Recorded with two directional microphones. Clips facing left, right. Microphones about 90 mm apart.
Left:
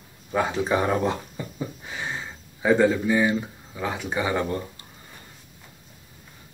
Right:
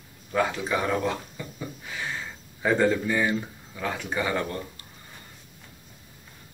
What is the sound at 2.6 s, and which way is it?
Speech, 10° left (ahead or behind).